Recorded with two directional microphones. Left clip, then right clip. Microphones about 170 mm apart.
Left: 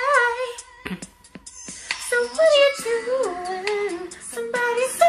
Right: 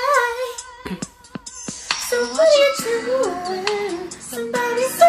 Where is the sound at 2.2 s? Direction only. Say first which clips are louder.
Right 2 dB; 50° right (ahead or behind).